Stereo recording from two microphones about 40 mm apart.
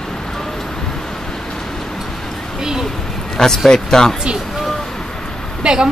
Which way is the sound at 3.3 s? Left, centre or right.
Centre.